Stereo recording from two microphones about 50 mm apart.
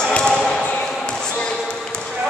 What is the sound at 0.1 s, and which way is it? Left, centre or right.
Basketball bounce, centre.